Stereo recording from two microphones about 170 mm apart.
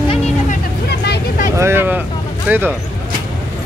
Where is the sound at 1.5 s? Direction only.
15° right (ahead or behind).